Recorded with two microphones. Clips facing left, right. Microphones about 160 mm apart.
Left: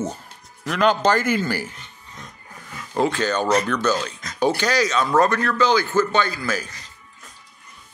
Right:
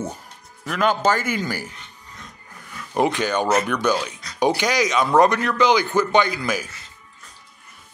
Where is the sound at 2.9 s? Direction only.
15° right (ahead or behind).